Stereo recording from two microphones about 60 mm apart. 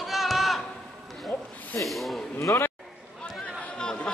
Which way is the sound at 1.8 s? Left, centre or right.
Centre.